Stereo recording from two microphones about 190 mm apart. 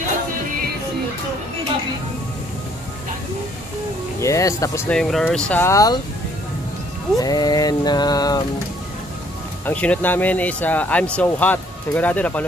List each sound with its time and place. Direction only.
4.2 s speech: 15° left (ahead or behind)
5.5 s speech: 15° left (ahead or behind)
7.2 s a sound: 20° left (ahead or behind)
9.7 s speech: 10° left (ahead or behind)